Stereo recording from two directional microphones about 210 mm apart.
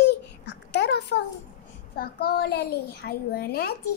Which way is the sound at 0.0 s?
55° left (ahead or behind).